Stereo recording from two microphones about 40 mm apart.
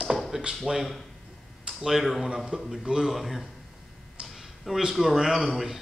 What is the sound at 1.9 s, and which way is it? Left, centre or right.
Speech, centre.